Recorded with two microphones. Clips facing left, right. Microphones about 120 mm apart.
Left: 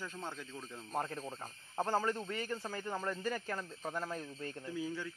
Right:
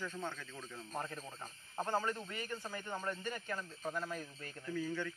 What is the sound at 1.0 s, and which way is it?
A man's voice, 30° left (ahead or behind).